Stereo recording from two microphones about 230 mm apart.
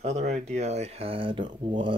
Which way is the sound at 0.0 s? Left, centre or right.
Right.